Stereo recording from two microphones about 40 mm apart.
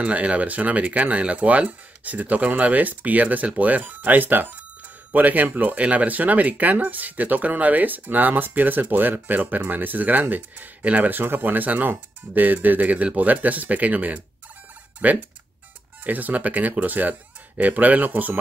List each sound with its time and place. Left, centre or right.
0.0 s speech: right
11.1 s speech: right